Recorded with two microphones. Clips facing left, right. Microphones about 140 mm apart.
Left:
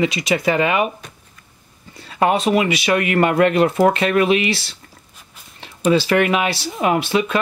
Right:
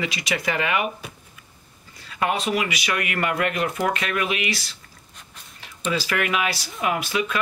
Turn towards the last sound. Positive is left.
turn(degrees=30)  # may be behind; listen again after turning